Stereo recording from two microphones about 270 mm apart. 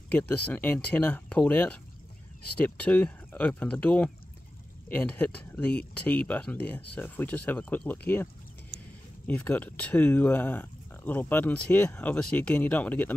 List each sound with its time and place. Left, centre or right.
0.5 s speech: centre
9.3 s speech: centre